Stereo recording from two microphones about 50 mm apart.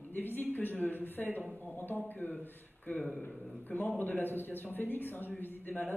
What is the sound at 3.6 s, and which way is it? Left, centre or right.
A man's voice, left.